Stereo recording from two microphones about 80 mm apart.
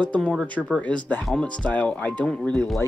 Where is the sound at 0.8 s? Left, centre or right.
Centre.